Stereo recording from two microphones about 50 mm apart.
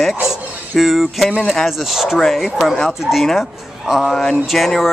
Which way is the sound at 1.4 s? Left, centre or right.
Centre.